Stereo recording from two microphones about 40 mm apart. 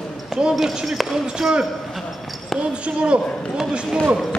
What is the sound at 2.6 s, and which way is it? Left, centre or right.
Speech, right.